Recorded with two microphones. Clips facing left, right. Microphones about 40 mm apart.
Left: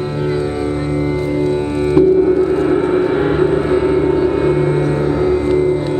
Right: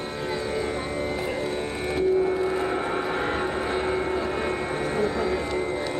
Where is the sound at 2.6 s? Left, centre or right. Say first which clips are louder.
Left 12 dB; centre.